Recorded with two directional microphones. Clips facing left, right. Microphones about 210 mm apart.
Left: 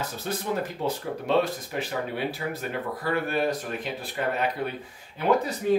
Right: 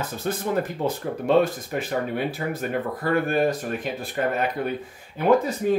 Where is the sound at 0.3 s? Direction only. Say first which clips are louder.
Right 4 dB; 55° right (ahead or behind).